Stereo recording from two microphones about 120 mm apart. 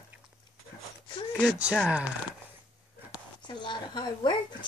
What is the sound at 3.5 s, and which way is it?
Speech, 40° left (ahead or behind).